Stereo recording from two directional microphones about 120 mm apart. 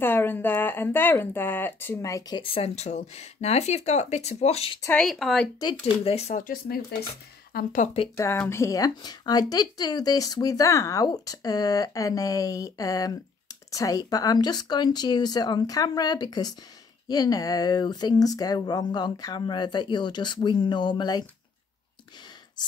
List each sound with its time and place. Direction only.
0.0 s speech: 15° left (ahead or behind)
2.4 s speech: 55° left (ahead or behind)
4.9 s speech: centre (ahead or behind)
5.6 s speech: 40° left (ahead or behind); by 6.4 s 65° left (ahead or behind)
7.7 s speech: 90° left
8.2 s speech: 20° left (ahead or behind); by 21.3 s 40° left (ahead or behind)